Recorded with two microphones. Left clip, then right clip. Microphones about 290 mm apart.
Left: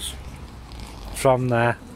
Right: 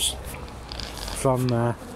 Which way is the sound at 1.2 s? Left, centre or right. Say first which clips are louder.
Left 5 dB; left.